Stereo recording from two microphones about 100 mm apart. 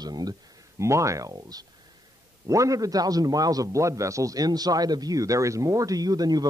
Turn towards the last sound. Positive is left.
turn(degrees=-40)  # may be behind; listen again after turning